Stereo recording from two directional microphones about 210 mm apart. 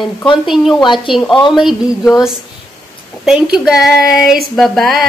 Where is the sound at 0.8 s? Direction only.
25° left (ahead or behind).